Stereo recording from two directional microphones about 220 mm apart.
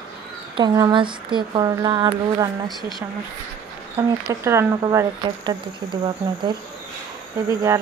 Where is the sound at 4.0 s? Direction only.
15° right (ahead or behind).